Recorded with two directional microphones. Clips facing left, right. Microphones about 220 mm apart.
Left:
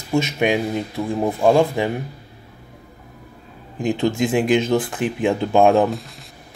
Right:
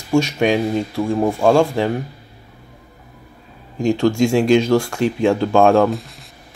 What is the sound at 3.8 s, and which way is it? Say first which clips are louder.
Speech: right 4 dB; 20° left (ahead or behind).